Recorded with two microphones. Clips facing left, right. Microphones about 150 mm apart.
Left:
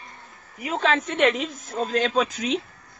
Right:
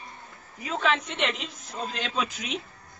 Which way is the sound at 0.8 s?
45° left (ahead or behind).